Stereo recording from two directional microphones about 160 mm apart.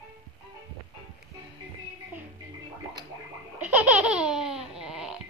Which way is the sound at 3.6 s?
10° right (ahead or behind).